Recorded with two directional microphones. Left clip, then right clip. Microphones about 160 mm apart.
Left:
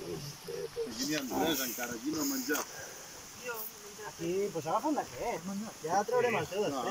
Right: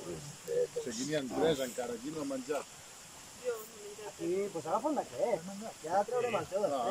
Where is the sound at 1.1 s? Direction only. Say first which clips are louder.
Right 2 dB; 40° right (ahead or behind).